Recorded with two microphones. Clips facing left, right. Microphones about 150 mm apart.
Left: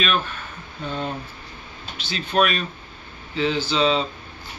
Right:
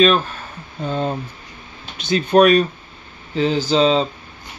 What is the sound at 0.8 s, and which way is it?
Speech, 40° right (ahead or behind).